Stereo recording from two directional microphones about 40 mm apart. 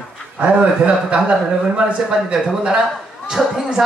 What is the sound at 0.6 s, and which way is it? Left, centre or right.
Speech, right.